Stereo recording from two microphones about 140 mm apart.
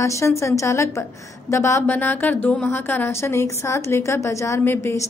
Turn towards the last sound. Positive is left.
turn(degrees=20)  # may be behind; listen again after turning